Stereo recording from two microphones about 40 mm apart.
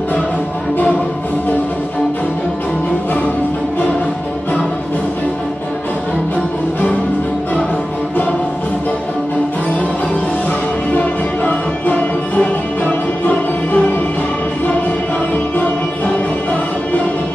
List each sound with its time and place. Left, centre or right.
10.9 s music: left
15.3 s music: left